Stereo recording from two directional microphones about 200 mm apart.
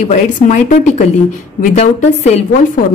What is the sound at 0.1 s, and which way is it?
Speech, 35° left (ahead or behind).